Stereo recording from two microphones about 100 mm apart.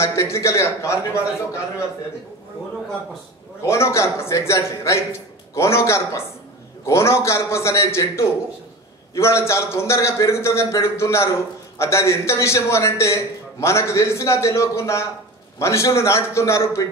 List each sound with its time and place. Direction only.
0.0 s a man's voice: 30° left (ahead or behind)
3.6 s a man's voice: 30° left (ahead or behind)